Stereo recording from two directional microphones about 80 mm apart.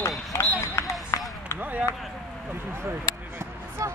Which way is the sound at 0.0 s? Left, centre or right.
Left.